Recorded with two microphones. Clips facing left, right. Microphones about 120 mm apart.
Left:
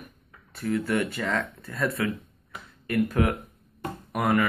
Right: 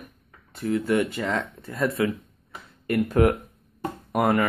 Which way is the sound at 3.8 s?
30° right (ahead or behind).